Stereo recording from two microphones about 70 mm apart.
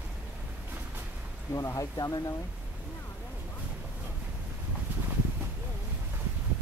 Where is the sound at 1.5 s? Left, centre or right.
Left.